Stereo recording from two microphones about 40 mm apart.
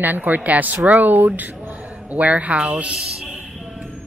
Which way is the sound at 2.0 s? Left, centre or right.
Right.